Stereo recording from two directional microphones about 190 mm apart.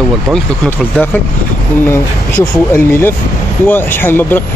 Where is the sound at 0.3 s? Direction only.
5° left (ahead or behind).